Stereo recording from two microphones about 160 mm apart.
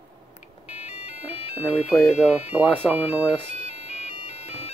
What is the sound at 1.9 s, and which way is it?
Speech, 5° right (ahead or behind).